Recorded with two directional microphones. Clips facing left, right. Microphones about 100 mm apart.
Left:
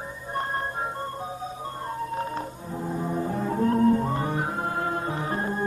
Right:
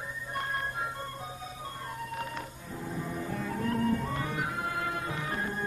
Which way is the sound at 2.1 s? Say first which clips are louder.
Left 7 dB; 35° left (ahead or behind).